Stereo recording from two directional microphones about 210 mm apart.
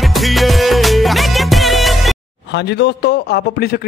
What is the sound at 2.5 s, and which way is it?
A man's voice, 55° left (ahead or behind).